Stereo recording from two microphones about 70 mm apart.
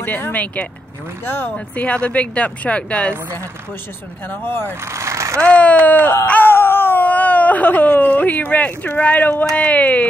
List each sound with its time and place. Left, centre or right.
0.0 s speech: left
1.2 s speech: left
1.5 s speech: centre
4.3 s speech: left
4.9 s a sound: right
5.4 s speech: centre